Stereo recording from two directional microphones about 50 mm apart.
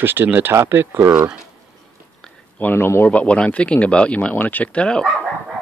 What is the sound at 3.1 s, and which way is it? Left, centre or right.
Speech, left.